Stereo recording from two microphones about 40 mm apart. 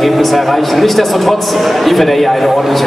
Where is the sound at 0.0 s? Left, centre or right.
Centre.